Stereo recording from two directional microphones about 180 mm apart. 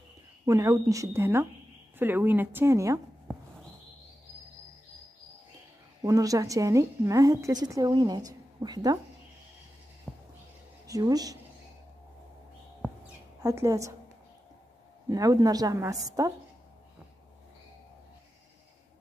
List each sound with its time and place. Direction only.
0.5 s speech: 15° right (ahead or behind)
6.0 s a woman's voice: 20° right (ahead or behind)
10.1 s a sound: centre (ahead or behind)
10.9 s a woman's voice: 20° right (ahead or behind)
13.4 s speech: 20° right (ahead or behind)
15.0 s a woman's voice: 20° right (ahead or behind)